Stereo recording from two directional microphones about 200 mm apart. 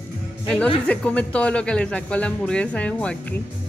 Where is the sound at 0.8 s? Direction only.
5° left (ahead or behind).